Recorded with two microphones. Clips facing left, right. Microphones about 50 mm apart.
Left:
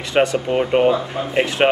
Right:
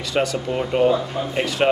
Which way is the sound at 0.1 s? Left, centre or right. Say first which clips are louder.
Left 5 dB; left.